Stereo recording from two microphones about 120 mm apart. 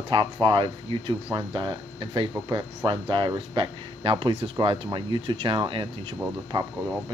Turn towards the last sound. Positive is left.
turn(degrees=-40)  # may be behind; listen again after turning